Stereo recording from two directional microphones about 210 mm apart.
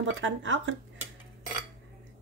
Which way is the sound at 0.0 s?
60° right (ahead or behind).